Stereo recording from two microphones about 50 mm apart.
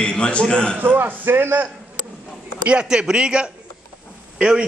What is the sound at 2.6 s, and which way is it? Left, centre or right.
A man's voice, right.